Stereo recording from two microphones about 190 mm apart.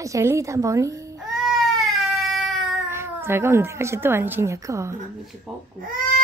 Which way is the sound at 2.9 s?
15° right (ahead or behind).